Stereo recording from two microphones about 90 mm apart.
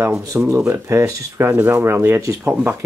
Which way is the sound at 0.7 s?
35° right (ahead or behind).